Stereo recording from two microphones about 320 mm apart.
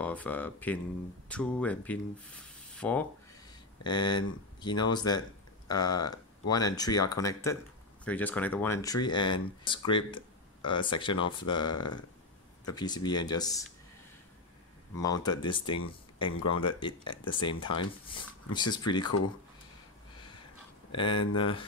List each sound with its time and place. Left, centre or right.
0.0 s speech: centre
12.7 s speech: centre
15.0 s speech: centre
20.9 s speech: centre